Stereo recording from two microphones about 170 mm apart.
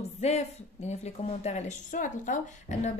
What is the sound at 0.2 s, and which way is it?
A woman's voice, 40° left (ahead or behind).